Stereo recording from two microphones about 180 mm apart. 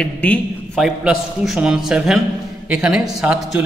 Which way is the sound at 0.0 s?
5° left (ahead or behind).